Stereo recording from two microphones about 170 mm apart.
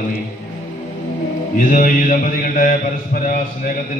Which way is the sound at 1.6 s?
55° left (ahead or behind).